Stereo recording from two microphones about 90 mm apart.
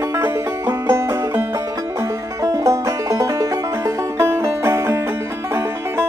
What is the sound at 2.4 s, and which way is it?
Music, 35° right (ahead or behind).